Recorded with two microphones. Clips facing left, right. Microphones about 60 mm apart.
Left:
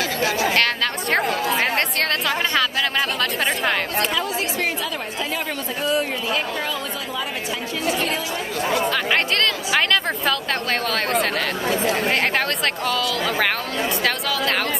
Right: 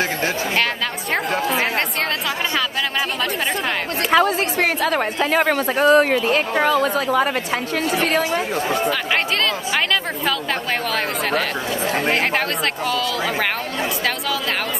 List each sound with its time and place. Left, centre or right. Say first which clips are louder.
4.1 s a woman's voice: right 7 dB; right
9.1 s speech: even; centre